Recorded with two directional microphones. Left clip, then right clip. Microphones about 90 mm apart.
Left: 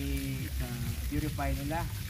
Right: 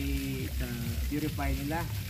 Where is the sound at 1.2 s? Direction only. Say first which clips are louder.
Right 1 dB; 15° right (ahead or behind).